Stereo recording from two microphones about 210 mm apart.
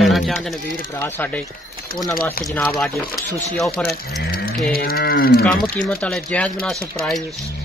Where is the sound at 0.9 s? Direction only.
10° left (ahead or behind).